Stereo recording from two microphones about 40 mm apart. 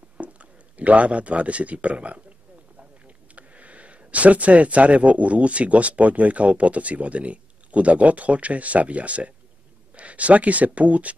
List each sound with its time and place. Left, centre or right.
0.2 s speech: right
3.3 s speech: right